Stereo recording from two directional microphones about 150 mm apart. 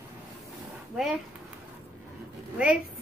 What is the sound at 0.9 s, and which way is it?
Speech, 5° right (ahead or behind).